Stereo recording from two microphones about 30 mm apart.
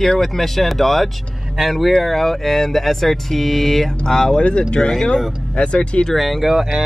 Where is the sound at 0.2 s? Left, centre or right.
Centre.